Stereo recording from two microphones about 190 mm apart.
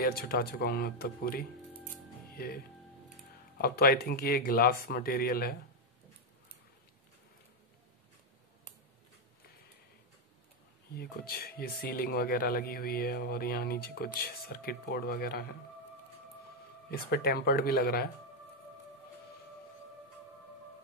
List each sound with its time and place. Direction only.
0.0 s speech: 50° left (ahead or behind)
11.0 s speech: 55° left (ahead or behind)
16.9 s speech: 55° left (ahead or behind)